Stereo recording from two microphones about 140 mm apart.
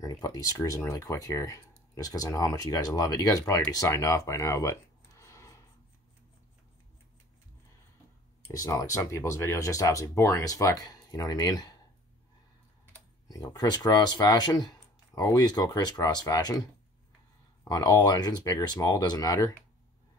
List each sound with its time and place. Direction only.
0.0 s speech: 25° left (ahead or behind)
8.5 s speech: 20° left (ahead or behind)
13.3 s speech: 25° left (ahead or behind)
17.6 s speech: 25° left (ahead or behind)